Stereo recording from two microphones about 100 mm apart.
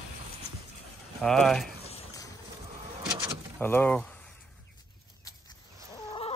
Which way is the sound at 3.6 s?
20° left (ahead or behind).